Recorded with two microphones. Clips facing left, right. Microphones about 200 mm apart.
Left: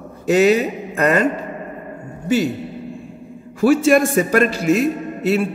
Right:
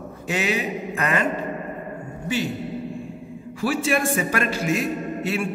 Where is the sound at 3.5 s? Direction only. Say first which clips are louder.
Left 9 dB; 45° left (ahead or behind).